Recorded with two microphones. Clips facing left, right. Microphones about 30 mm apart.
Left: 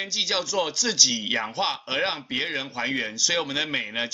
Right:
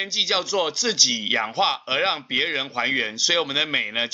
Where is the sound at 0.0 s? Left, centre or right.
Centre.